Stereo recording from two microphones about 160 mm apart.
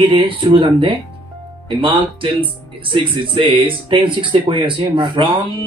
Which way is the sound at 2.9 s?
30° right (ahead or behind).